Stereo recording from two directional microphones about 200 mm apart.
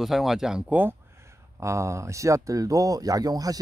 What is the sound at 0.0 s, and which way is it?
Speech, centre (ahead or behind).